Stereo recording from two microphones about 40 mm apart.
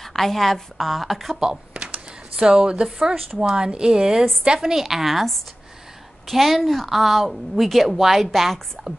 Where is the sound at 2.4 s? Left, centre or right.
Right.